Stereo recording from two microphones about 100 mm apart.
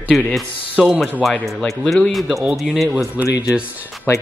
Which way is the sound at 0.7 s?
10° right (ahead or behind).